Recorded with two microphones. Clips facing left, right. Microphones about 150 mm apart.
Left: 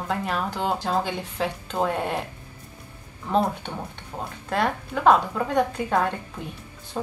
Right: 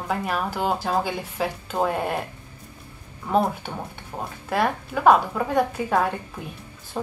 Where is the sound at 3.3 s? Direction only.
10° right (ahead or behind).